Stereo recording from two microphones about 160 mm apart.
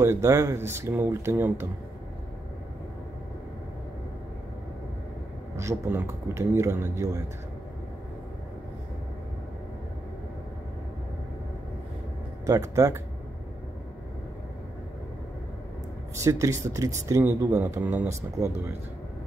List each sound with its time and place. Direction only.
0.0 s speech: 15° right (ahead or behind)
5.6 s speech: 15° right (ahead or behind)
12.4 s speech: 20° right (ahead or behind)
16.2 s speech: 20° right (ahead or behind)